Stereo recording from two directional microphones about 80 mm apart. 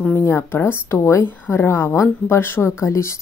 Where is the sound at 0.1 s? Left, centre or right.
Left.